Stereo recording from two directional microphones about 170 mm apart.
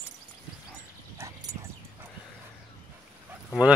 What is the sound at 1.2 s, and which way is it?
Dog, 15° right (ahead or behind).